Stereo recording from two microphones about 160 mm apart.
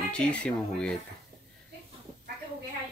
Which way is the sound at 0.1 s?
5° left (ahead or behind).